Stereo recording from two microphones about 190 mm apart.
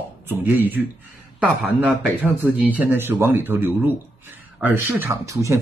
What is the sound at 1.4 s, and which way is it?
Speech, 5° left (ahead or behind).